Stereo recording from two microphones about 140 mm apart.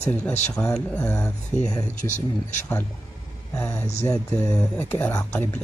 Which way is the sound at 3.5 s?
15° left (ahead or behind).